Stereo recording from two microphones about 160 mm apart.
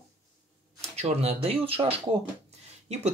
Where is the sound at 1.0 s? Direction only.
40° right (ahead or behind).